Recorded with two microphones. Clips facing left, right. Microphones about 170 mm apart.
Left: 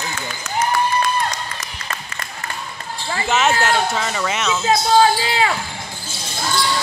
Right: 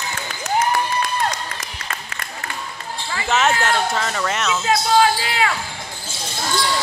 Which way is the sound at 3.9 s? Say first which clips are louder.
Even; centre (ahead or behind).